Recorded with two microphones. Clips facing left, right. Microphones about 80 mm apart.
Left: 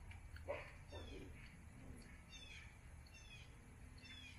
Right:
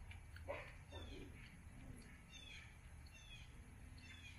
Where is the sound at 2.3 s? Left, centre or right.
Centre.